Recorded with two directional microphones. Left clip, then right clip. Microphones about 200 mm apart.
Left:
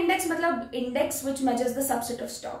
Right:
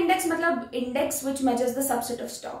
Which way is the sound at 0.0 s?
10° right (ahead or behind).